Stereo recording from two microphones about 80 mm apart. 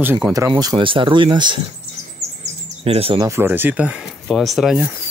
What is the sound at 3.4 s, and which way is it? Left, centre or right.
Speech, right.